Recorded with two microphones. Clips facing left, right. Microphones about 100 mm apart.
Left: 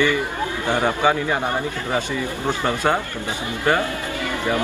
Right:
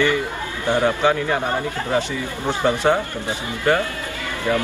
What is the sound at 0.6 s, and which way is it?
Speech, 15° left (ahead or behind).